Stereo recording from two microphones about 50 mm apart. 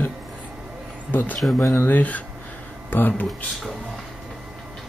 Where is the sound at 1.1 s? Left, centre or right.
Left.